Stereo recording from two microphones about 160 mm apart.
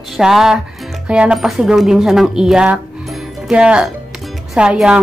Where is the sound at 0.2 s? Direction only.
5° right (ahead or behind).